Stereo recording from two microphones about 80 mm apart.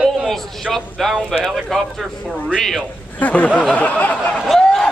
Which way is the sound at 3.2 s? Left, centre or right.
Centre.